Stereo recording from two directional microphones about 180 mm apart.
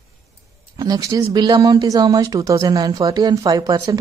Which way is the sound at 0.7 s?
20° right (ahead or behind).